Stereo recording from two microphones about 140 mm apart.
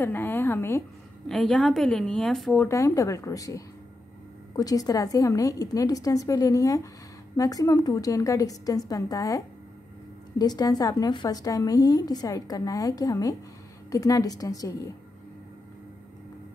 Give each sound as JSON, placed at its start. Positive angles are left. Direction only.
{"t": 0.0, "sound": "a woman's voice", "side_deg": 15}
{"t": 1.3, "sound": "a woman's voice", "side_deg": 5}
{"t": 2.6, "sound": "a woman's voice", "side_deg": 20}
{"t": 10.4, "sound": "a woman's voice", "side_deg": 30}